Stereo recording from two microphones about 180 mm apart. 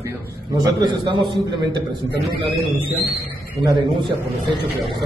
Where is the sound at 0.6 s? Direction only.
25° right (ahead or behind).